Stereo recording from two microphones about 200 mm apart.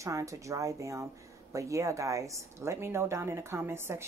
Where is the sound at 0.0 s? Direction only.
15° right (ahead or behind).